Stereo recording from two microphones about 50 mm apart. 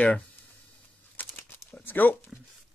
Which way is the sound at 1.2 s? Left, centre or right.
Left.